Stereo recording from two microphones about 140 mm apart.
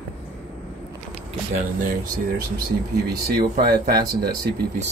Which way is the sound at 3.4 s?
90° right.